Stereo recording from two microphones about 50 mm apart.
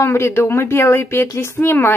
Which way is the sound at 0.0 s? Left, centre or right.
Left.